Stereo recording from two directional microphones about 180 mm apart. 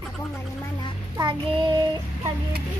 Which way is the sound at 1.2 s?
25° right (ahead or behind).